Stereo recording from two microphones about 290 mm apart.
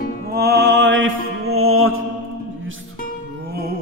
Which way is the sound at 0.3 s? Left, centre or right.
Right.